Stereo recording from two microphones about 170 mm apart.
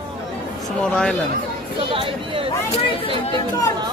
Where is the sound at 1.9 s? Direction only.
30° right (ahead or behind).